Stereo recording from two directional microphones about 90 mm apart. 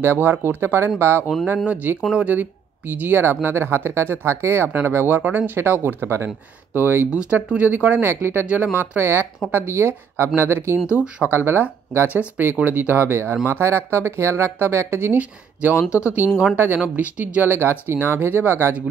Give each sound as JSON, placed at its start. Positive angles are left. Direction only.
{"t": 0.0, "sound": "speech", "side_deg": -25}
{"t": 7.1, "sound": "speech", "side_deg": -15}